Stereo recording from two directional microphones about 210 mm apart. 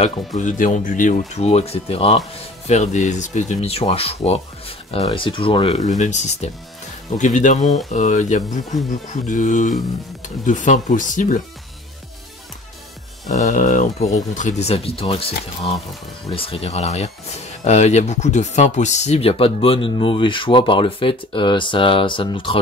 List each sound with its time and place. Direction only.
0.0 s speech: 35° left (ahead or behind)
13.3 s speech: 35° left (ahead or behind)